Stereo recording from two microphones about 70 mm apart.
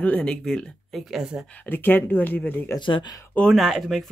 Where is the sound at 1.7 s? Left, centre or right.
Left.